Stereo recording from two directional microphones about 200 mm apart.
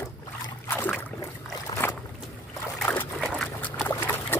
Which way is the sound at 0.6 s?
10° left (ahead or behind).